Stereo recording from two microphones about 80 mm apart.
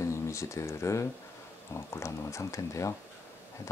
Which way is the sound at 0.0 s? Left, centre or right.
Left.